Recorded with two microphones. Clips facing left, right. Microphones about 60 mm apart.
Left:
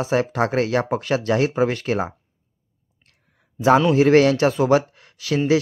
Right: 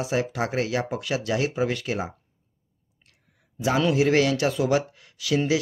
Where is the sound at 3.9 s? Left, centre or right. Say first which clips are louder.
Left 6 dB; left.